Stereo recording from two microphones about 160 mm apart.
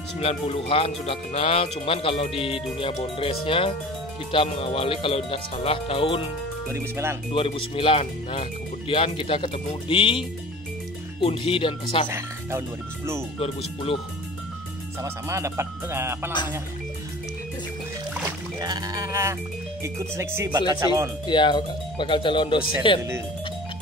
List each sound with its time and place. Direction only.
0.2 s speech: 40° left (ahead or behind)
6.7 s speech: 15° right (ahead or behind)
7.3 s speech: 35° left (ahead or behind)
12.1 s speech: 15° right (ahead or behind)
15.0 s speech: 20° right (ahead or behind)
18.6 s music: 25° right (ahead or behind)
19.8 s speech: 20° right (ahead or behind)
21.3 s speech: 30° left (ahead or behind)